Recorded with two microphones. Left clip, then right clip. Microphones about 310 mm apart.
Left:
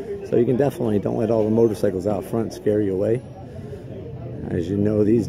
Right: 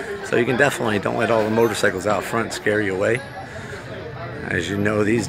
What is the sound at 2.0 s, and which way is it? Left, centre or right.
Speech, right.